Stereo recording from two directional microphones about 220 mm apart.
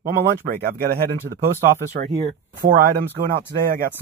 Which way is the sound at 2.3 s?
40° right (ahead or behind).